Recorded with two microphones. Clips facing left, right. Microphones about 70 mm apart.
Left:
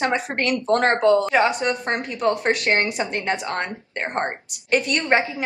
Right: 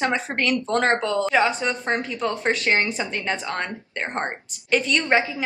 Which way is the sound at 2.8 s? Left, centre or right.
Left.